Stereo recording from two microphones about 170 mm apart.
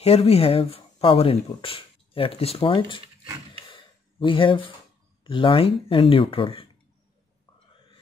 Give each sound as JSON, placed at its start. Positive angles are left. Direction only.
{"t": 0.0, "sound": "speech", "side_deg": 35}
{"t": 3.7, "sound": "a sound", "side_deg": 30}
{"t": 5.2, "sound": "speech", "side_deg": 30}